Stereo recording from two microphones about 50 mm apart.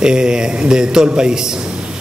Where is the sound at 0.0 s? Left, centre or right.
Centre.